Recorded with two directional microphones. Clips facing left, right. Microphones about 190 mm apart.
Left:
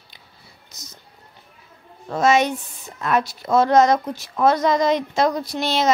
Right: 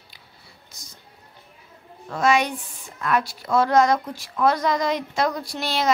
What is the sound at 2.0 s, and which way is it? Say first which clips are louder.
Speech: left 3 dB; 25° left (ahead or behind).